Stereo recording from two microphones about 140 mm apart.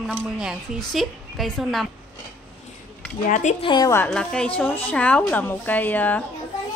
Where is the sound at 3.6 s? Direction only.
35° left (ahead or behind).